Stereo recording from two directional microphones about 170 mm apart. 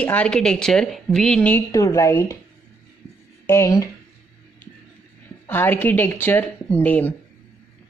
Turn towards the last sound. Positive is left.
turn(degrees=10)  # may be behind; listen again after turning